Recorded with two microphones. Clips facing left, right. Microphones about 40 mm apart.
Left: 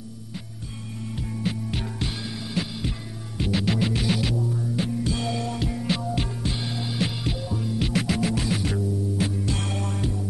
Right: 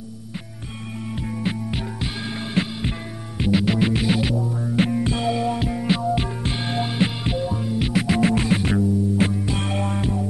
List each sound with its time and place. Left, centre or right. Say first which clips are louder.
1.1 s music: right 3 dB; right
1.8 s music: right 2 dB; centre
2.2 s music: right 5 dB; right
3.3 s music: right 5 dB; centre
4.7 s music: right 10 dB; right
5.2 s music: right 6 dB; centre
6.4 s music: right 5 dB; right
7.0 s music: right 3 dB; right
8.2 s music: right 6 dB; right
9.5 s music: right 4 dB; right